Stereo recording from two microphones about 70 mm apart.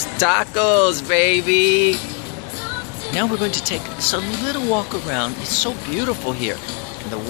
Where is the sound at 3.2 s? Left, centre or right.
Centre.